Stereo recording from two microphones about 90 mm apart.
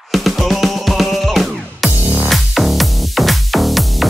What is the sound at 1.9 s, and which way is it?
Music, 15° right (ahead or behind).